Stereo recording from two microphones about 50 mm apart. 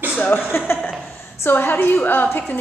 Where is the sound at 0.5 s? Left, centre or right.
Left.